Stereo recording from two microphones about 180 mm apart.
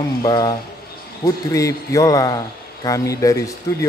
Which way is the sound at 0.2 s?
20° left (ahead or behind).